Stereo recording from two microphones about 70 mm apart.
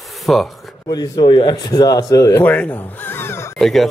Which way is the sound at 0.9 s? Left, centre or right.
Left.